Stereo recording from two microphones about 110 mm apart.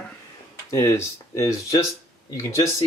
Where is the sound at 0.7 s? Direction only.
25° left (ahead or behind).